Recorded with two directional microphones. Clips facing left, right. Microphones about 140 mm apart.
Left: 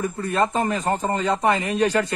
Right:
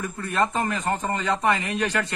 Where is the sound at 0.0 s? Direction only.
30° left (ahead or behind).